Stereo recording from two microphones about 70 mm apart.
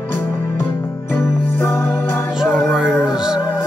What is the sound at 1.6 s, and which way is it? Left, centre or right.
Music, left.